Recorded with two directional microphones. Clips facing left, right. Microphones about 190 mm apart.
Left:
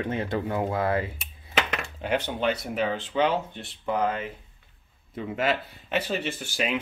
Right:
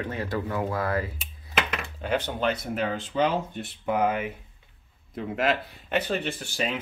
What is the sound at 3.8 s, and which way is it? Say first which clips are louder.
Speech: right 2 dB; 10° right (ahead or behind).